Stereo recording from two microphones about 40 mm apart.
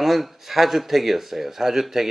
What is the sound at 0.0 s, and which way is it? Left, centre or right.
Speech, centre.